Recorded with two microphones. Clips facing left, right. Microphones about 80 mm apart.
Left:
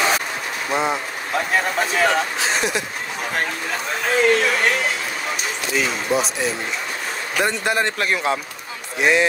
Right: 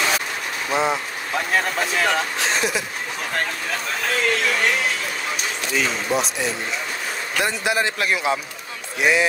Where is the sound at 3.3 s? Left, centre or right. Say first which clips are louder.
Left 1 dB; centre.